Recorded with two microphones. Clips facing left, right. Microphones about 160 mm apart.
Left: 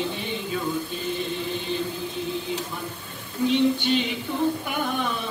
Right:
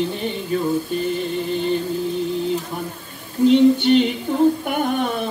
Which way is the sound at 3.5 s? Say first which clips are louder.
Right 8 dB; 55° right (ahead or behind).